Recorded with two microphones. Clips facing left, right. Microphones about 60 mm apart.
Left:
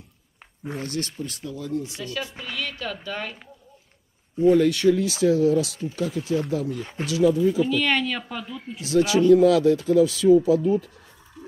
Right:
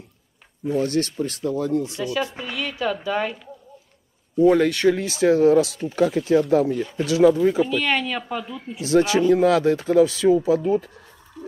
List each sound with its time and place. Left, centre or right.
0.8 s speech: right
2.3 s speech: centre
4.5 s speech: right
7.6 s speech: centre
8.8 s speech: right